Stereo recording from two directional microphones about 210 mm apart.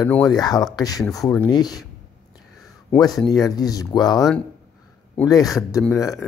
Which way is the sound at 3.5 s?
15° left (ahead or behind).